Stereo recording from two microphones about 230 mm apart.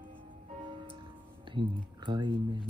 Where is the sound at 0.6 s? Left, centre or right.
Right.